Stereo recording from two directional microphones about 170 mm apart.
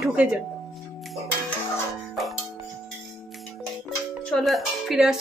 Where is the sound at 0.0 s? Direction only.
5° right (ahead or behind).